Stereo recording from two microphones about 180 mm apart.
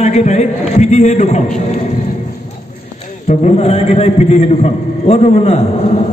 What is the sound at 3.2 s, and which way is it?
A man's voice, 40° left (ahead or behind).